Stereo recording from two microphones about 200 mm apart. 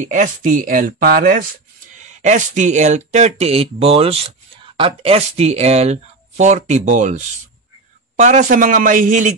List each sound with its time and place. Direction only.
0.0 s speech: 40° right (ahead or behind)
2.0 s speech: 35° right (ahead or behind)